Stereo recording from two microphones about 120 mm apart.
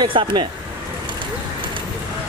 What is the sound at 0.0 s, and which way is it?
Speech, 40° right (ahead or behind).